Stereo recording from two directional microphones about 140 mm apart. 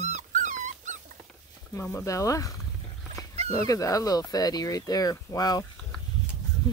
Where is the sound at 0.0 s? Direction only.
60° right (ahead or behind).